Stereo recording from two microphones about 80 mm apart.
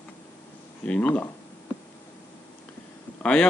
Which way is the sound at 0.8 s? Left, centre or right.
Centre.